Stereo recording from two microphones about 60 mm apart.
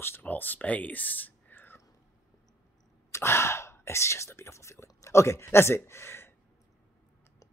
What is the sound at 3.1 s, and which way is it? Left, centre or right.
Speech, left.